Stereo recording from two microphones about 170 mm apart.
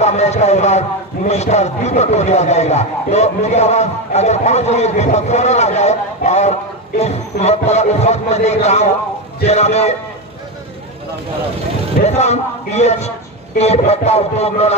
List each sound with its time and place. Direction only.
0.0 s a man's voice: 40° left (ahead or behind)
12.0 s a man's voice: 40° left (ahead or behind)